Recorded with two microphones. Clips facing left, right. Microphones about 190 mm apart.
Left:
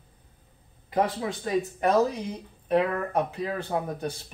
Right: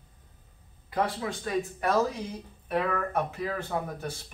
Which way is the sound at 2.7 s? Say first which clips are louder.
Left 4 dB; 20° left (ahead or behind).